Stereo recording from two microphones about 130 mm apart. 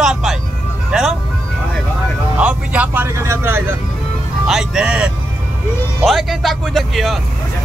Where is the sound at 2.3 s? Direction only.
10° right (ahead or behind).